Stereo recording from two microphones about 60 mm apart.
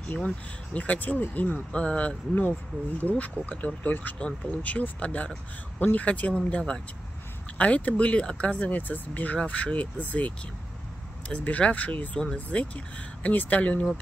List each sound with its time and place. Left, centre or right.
0.7 s speech: left